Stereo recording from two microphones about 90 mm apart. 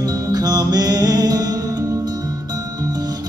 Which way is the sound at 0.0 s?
45° right (ahead or behind).